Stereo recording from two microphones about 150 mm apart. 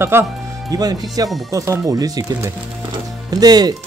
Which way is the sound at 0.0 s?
15° right (ahead or behind).